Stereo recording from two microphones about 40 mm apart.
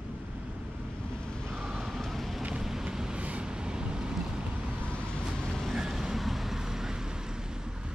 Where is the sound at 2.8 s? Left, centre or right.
Centre.